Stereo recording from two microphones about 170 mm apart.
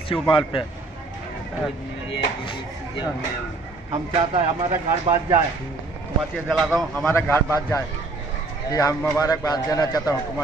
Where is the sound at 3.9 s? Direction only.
35° right (ahead or behind).